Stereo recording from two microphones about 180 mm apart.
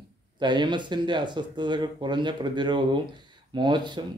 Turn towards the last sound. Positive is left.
turn(degrees=-25)  # may be behind; listen again after turning